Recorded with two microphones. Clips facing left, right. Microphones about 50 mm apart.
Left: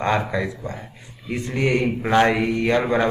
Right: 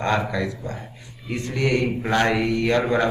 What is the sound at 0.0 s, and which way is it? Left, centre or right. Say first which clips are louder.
Speech: left 1 dB; centre.